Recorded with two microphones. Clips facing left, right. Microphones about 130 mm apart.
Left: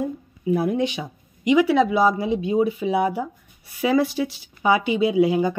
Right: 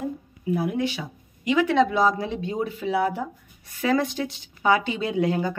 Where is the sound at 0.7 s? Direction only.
20° left (ahead or behind).